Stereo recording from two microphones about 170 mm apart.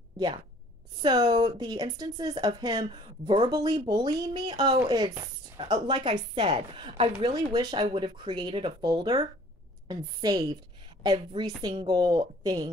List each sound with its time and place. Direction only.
0.9 s a woman's voice: 25° right (ahead or behind)